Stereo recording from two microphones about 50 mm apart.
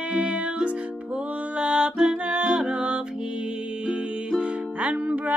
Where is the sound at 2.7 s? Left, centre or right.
Right.